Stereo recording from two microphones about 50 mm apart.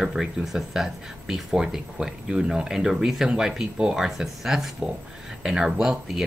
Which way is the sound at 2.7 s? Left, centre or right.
Centre.